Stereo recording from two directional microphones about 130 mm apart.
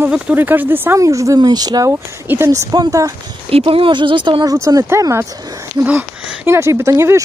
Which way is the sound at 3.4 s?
45° right (ahead or behind).